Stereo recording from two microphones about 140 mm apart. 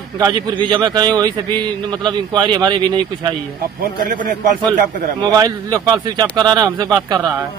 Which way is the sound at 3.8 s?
80° right.